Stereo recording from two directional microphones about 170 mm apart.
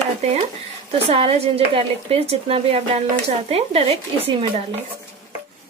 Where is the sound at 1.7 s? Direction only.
35° right (ahead or behind).